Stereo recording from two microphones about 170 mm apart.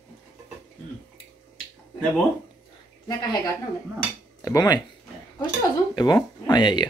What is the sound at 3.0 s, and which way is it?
A woman's voice, 25° left (ahead or behind).